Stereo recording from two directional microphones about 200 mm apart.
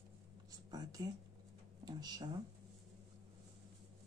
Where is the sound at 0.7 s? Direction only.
20° right (ahead or behind).